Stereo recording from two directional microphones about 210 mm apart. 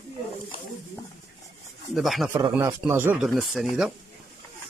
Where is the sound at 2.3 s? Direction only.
10° right (ahead or behind).